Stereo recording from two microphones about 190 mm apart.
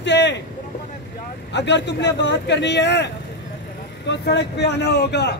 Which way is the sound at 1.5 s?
65° left (ahead or behind).